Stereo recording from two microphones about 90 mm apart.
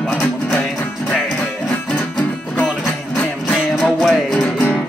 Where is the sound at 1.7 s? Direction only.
15° left (ahead or behind); by 4.5 s centre (ahead or behind).